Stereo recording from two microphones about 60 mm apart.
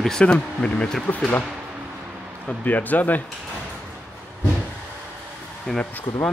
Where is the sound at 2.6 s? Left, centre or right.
Left.